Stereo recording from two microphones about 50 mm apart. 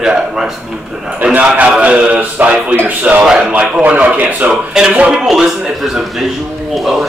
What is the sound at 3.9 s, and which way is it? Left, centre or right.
Speech, right.